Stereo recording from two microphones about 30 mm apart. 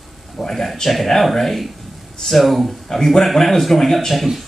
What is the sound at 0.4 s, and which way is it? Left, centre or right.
A man's voice, centre.